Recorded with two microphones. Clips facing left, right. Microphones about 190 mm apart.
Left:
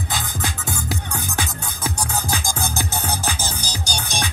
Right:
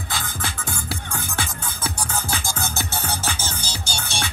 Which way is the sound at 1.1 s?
15° left (ahead or behind).